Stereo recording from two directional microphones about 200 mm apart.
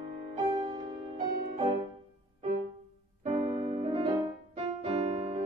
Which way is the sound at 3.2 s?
30° right (ahead or behind).